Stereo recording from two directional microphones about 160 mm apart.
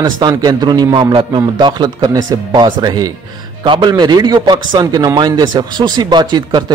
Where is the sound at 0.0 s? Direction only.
25° right (ahead or behind).